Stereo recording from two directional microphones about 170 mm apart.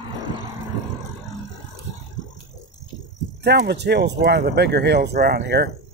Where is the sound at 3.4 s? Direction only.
75° right (ahead or behind).